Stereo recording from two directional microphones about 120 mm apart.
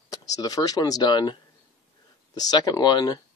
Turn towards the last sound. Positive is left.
turn(degrees=35)  # may be behind; listen again after turning